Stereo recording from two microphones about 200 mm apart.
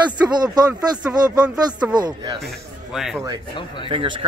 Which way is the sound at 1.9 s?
20° right (ahead or behind).